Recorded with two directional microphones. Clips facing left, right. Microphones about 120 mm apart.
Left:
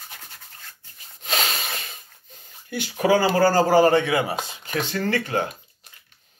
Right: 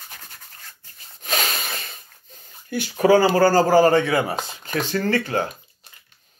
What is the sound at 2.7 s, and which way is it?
Speech, 15° left (ahead or behind).